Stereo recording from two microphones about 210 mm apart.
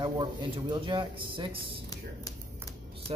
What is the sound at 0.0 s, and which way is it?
Speech, 20° right (ahead or behind).